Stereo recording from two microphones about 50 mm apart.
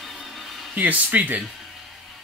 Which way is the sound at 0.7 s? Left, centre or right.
Right.